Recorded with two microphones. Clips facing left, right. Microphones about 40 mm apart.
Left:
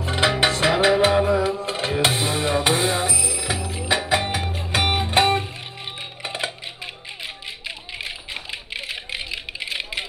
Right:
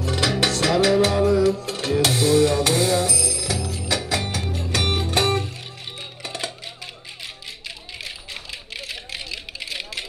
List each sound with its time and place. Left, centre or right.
0.0 s music: left
7.6 s typing: left